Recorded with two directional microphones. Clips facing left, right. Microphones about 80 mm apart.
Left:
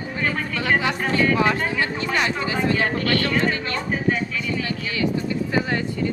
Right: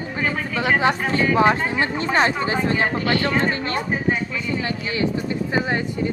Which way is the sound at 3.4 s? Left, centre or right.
Right.